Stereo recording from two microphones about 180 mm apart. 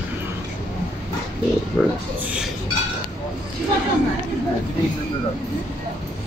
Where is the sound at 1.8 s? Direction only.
5° left (ahead or behind).